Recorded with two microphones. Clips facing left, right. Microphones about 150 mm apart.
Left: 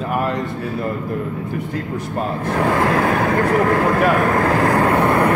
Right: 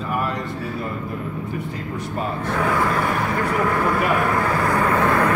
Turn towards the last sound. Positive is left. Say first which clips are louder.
# left 3 dB
turn(degrees=20)  # may be behind; listen again after turning